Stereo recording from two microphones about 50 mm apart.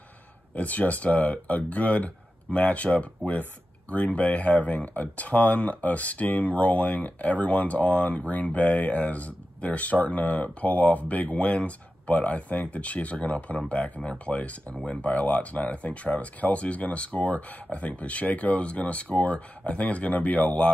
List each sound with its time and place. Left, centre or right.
0.6 s speech: left